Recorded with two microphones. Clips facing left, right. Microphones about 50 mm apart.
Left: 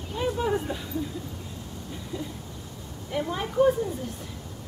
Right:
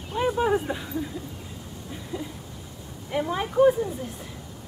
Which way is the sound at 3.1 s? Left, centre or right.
Centre.